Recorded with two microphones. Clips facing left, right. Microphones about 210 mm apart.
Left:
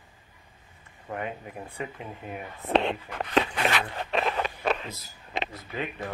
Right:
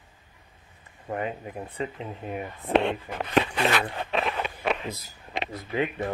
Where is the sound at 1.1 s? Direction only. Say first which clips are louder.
Right 3 dB; 20° right (ahead or behind).